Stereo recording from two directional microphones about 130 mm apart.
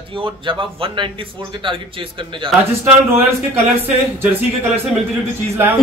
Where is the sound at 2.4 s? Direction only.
40° right (ahead or behind).